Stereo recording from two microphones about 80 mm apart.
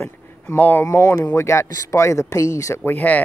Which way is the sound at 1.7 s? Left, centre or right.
Left.